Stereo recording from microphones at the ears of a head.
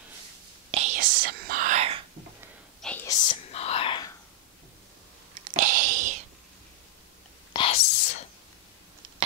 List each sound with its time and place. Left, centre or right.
0.7 s whispering: right
3.0 s whispering: left
5.3 s a sound: right
7.5 s whispering: left